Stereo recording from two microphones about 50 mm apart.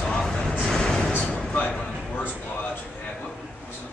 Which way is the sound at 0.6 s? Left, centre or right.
Centre.